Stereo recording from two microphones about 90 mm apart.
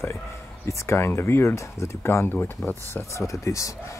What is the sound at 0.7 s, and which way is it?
Speech, 35° left (ahead or behind).